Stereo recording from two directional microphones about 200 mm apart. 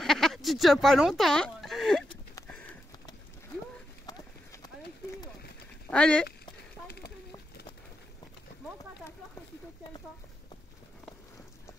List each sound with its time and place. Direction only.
0.0 s a sound: centre (ahead or behind)
2.4 s horse: 5° left (ahead or behind)
4.0 s horse: 20° left (ahead or behind)
5.9 s speech: 5° left (ahead or behind)